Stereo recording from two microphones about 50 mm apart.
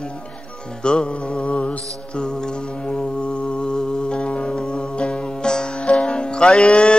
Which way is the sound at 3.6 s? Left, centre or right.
Centre.